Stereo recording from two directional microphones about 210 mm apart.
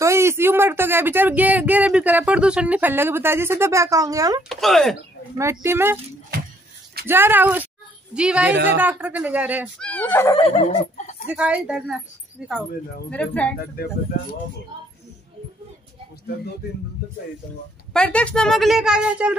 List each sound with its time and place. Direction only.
0.0 s speech: 15° right (ahead or behind)
4.4 s a woman's voice: centre (ahead or behind)
5.4 s speech: 15° right (ahead or behind)
7.1 s a woman's voice: 10° right (ahead or behind)
9.8 s a woman's voice: 5° left (ahead or behind)
10.3 s speech: 25° left (ahead or behind)
11.2 s a woman's voice: 5° right (ahead or behind)
17.9 s a woman's voice: 5° left (ahead or behind)